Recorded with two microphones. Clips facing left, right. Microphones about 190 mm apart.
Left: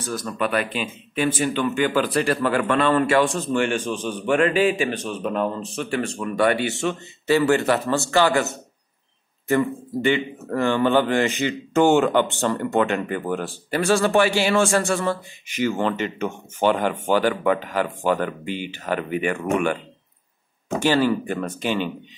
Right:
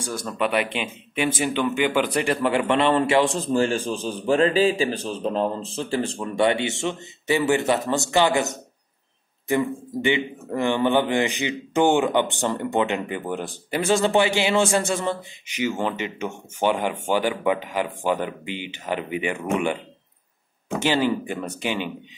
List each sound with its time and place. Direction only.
0.0 s a man's voice: 15° right (ahead or behind)
20.8 s a man's voice: 15° right (ahead or behind)